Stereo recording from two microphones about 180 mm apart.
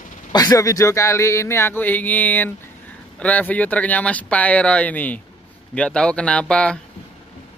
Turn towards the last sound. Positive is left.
turn(degrees=5)  # may be behind; listen again after turning